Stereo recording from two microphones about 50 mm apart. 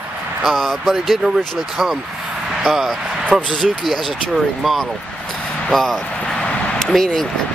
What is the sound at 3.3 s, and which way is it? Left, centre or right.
Speech, right.